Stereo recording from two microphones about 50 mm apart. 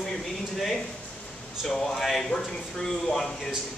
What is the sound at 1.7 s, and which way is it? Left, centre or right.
Speech, centre.